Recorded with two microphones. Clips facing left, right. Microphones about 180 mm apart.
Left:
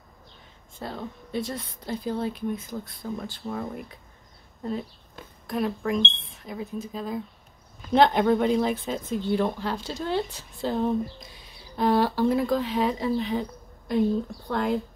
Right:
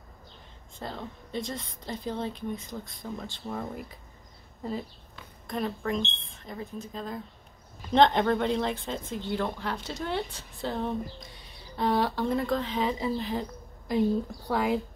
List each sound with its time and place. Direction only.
0.7 s a woman's voice: 5° left (ahead or behind)
5.5 s speech: 5° left (ahead or behind)
10.7 s a woman's voice: 5° left (ahead or behind)